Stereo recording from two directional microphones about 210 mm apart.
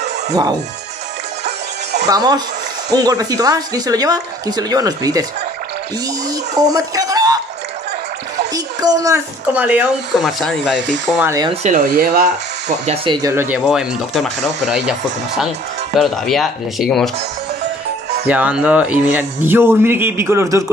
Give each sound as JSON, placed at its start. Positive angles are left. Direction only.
{"t": 0.3, "sound": "speech", "side_deg": -20}
{"t": 1.4, "sound": "music", "side_deg": -55}
{"t": 2.0, "sound": "speech", "side_deg": -20}
{"t": 6.7, "sound": "speech", "side_deg": -15}
{"t": 8.5, "sound": "speech", "side_deg": -20}
{"t": 11.6, "sound": "speech", "side_deg": -40}
{"t": 13.7, "sound": "speech", "side_deg": 0}
{"t": 18.2, "sound": "speech", "side_deg": -5}